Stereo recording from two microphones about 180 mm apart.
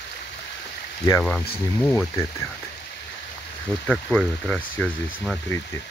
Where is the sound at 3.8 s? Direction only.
5° left (ahead or behind).